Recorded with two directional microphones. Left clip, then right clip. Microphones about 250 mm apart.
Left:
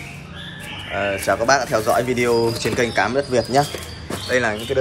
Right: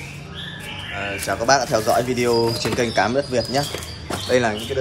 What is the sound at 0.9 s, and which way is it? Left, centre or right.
Speech, centre.